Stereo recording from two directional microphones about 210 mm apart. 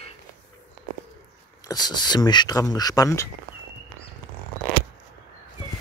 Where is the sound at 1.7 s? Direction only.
20° left (ahead or behind).